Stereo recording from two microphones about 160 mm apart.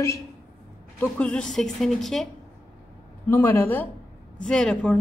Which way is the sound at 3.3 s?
15° left (ahead or behind).